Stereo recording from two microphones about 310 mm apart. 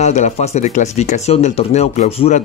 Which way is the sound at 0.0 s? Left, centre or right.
Left.